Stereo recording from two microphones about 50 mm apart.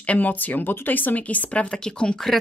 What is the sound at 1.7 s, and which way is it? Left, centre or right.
Speech, centre.